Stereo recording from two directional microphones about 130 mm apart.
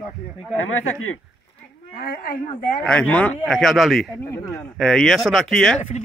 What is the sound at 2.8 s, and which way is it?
Speech, 10° left (ahead or behind).